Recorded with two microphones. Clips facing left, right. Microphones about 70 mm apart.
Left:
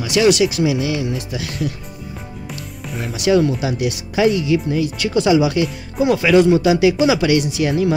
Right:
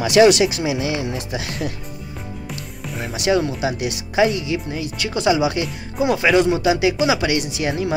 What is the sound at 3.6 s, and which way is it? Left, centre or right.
Speech, centre.